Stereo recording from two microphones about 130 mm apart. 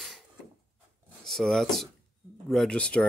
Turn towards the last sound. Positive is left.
turn(degrees=10)  # may be behind; listen again after turning